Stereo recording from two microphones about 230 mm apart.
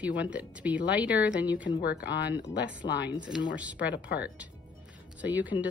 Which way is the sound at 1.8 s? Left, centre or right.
Left.